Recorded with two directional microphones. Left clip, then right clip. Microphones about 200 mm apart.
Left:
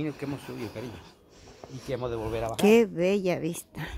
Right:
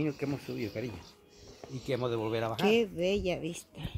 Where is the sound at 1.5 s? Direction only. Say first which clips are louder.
Left 1 dB; 35° left (ahead or behind).